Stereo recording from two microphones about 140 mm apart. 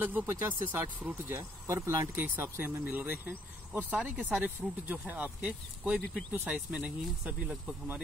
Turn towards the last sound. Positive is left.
turn(degrees=-5)  # may be behind; listen again after turning